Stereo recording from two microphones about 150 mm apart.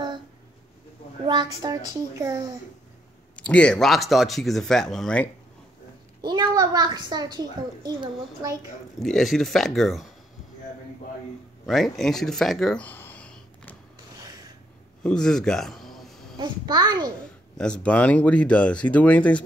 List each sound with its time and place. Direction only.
1.2 s a woman's voice: 30° right (ahead or behind)
3.3 s speech: 10° left (ahead or behind)
6.2 s a woman's voice: 30° right (ahead or behind)
9.0 s speech: centre (ahead or behind)
11.6 s speech: centre (ahead or behind)
15.0 s a sound: 5° left (ahead or behind)
16.3 s a woman's voice: 25° right (ahead or behind)
17.6 s speech: 5° left (ahead or behind)